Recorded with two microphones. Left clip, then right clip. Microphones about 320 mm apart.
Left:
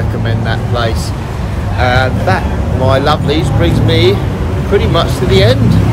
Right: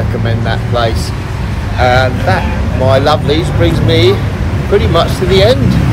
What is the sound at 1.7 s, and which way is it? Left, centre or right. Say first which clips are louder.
Speech: right 2 dB; centre.